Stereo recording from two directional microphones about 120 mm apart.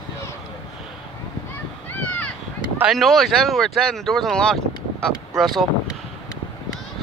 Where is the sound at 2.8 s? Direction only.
Centre (ahead or behind).